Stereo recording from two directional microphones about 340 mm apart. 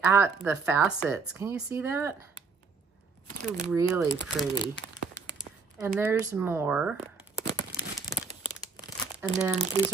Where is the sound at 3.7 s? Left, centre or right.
Centre.